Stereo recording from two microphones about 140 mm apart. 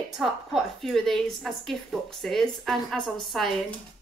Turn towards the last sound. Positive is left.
turn(degrees=0)  # may be behind; listen again after turning